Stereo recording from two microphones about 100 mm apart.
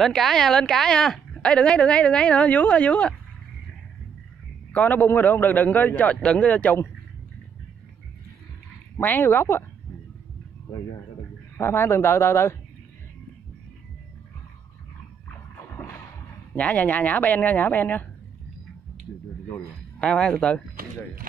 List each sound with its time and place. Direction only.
0.0 s speech: centre (ahead or behind)
4.7 s speech: 20° left (ahead or behind)
8.9 s speech: 20° left (ahead or behind)
11.5 s speech: 25° left (ahead or behind)
15.7 s a sound: 20° left (ahead or behind)
16.5 s speech: 15° left (ahead or behind)
20.0 s speech: 10° left (ahead or behind)